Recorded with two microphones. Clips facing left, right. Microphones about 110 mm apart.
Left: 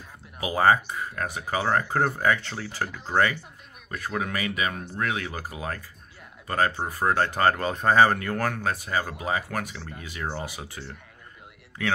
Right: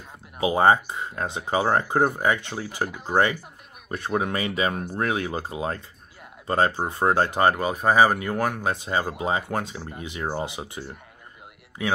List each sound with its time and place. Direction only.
0.4 s speech: 25° right (ahead or behind)